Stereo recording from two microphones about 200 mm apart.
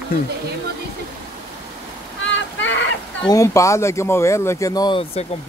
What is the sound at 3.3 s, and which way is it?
Speech, 15° left (ahead or behind).